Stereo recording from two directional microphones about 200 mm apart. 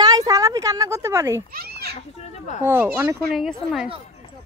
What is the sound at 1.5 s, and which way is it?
Children playing, 50° right (ahead or behind).